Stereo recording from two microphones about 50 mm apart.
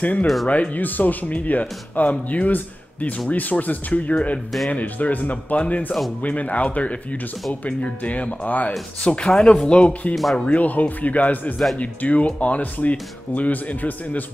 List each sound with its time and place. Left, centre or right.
0.0 s speech: left
9.0 s speech: centre
11.5 s speech: centre
11.8 s speech: left